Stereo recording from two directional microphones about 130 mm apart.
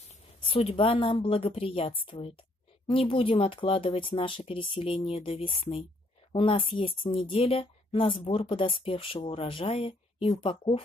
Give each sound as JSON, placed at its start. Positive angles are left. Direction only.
{"t": 0.4, "sound": "speech", "side_deg": 45}